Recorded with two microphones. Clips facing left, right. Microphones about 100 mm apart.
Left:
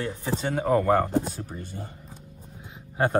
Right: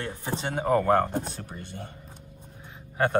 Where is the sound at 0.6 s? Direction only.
Centre (ahead or behind).